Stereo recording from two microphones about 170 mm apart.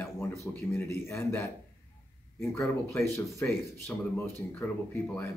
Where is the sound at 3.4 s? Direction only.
15° left (ahead or behind).